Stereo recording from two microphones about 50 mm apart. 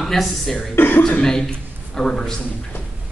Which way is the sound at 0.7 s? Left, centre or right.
Left.